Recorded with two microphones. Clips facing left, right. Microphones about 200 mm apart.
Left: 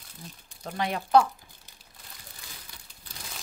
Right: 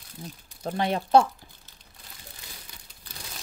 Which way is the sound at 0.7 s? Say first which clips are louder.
Right 4 dB; 30° right (ahead or behind).